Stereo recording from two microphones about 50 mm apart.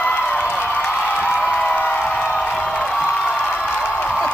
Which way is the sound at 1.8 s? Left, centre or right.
Left.